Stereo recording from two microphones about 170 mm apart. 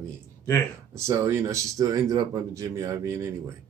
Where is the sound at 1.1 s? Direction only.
15° right (ahead or behind).